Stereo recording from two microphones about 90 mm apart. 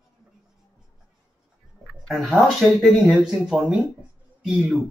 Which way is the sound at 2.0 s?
5° left (ahead or behind).